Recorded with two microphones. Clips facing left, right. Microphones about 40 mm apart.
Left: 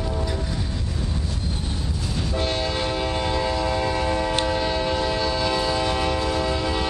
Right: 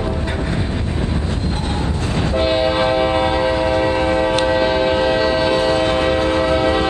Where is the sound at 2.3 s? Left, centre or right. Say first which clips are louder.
Right 9 dB; right.